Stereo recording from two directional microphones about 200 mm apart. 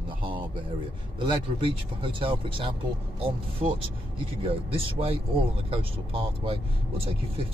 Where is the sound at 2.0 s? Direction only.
25° right (ahead or behind).